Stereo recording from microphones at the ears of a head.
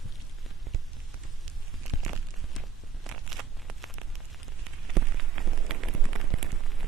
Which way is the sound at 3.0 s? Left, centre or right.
Right.